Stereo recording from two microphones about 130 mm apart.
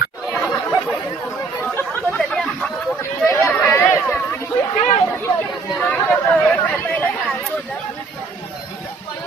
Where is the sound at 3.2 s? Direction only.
20° left (ahead or behind).